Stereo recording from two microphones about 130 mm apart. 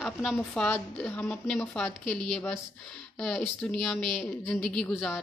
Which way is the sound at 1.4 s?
5° left (ahead or behind).